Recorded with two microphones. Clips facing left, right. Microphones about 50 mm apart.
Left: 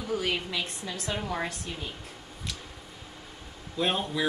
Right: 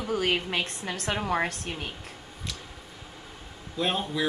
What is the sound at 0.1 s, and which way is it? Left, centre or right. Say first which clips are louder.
A woman's voice: right 3 dB; right.